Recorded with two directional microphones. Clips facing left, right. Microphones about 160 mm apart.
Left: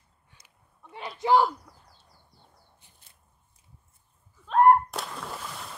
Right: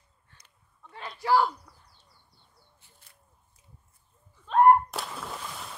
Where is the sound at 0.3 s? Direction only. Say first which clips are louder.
Left 2 dB; 15° left (ahead or behind).